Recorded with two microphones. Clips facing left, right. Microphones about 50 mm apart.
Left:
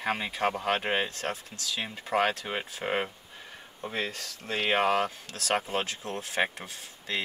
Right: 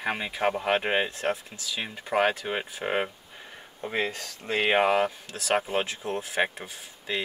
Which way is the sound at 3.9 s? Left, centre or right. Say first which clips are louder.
Right 4 dB; right.